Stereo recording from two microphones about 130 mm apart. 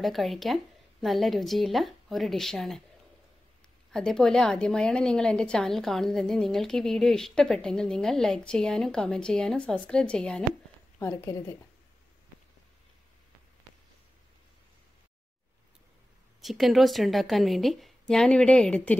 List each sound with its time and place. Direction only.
0.0 s a woman's voice: centre (ahead or behind)
3.9 s a woman's voice: 5° left (ahead or behind)
11.0 s a woman's voice: 20° left (ahead or behind)
16.3 s a woman's voice: centre (ahead or behind)